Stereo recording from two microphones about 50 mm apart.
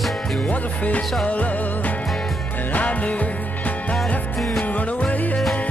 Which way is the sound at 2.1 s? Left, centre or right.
Centre.